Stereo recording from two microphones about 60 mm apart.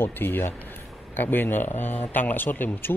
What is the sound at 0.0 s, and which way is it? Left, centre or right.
Speech, left.